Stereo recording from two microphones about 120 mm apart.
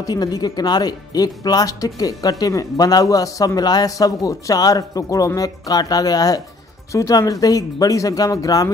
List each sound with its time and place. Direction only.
0.0 s speech: 35° left (ahead or behind)